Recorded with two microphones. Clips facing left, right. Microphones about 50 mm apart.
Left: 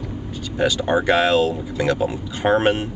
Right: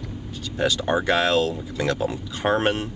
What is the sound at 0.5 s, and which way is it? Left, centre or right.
Speech, left.